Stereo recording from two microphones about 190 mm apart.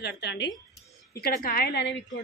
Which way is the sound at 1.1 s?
50° left (ahead or behind).